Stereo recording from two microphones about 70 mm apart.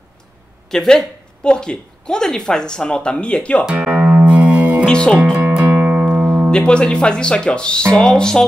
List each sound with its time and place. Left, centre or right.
0.7 s speech: centre
3.7 s music: centre
4.8 s speech: centre
5.7 s music: centre
6.5 s speech: centre